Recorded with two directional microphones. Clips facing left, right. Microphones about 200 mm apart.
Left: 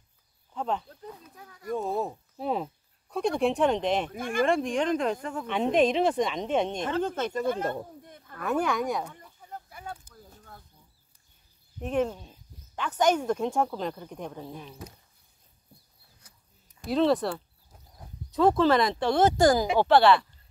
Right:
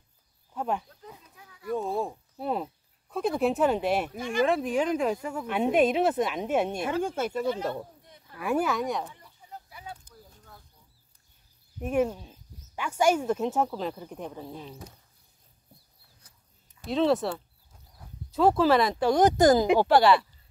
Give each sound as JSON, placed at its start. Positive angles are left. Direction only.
{"t": 0.5, "sound": "a sound", "side_deg": -10}
{"t": 1.3, "sound": "a sound", "side_deg": 40}
{"t": 1.8, "sound": "speech", "side_deg": 0}
{"t": 7.4, "sound": "speech", "side_deg": 50}
{"t": 8.0, "sound": "a sound", "side_deg": 55}
{"t": 8.4, "sound": "speech", "side_deg": -5}
{"t": 9.1, "sound": "vehicle", "side_deg": 50}
{"t": 11.8, "sound": "speech", "side_deg": -10}
{"t": 16.8, "sound": "speech", "side_deg": 0}
{"t": 19.9, "sound": "speech", "side_deg": -10}